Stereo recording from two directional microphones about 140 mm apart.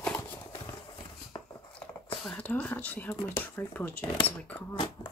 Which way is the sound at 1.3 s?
35° left (ahead or behind).